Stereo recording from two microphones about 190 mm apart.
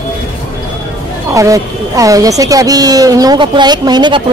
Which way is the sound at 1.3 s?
15° right (ahead or behind).